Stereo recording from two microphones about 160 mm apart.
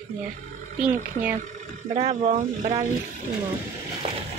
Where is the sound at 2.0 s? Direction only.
45° right (ahead or behind).